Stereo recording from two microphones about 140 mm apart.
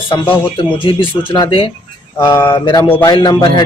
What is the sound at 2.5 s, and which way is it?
Speech, 35° left (ahead or behind).